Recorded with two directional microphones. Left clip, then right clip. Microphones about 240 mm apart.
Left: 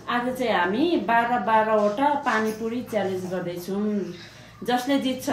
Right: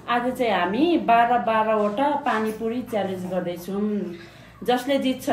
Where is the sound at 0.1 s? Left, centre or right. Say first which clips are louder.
Right 2 dB; centre.